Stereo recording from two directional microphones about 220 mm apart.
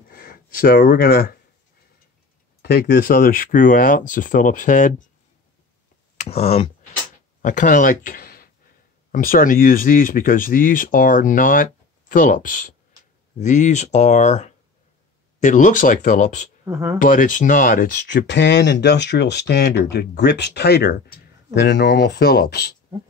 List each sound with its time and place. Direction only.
0.1 s speech: 40° left (ahead or behind)
2.6 s speech: 45° left (ahead or behind)
6.1 s speech: 30° left (ahead or behind)
16.6 s speech: 10° right (ahead or behind)
17.0 s speech: 35° left (ahead or behind)
18.0 s speech: 55° left (ahead or behind)